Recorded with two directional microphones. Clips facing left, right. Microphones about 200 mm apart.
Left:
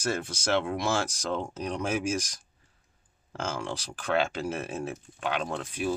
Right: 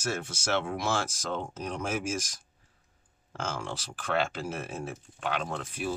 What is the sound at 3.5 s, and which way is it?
Speech, centre (ahead or behind).